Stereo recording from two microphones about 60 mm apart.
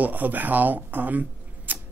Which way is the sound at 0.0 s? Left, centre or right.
Right.